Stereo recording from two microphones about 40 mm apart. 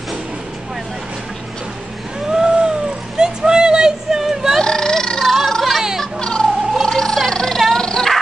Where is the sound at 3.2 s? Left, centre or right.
Centre.